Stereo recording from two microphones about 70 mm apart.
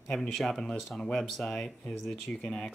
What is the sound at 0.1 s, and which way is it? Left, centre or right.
Speech, centre.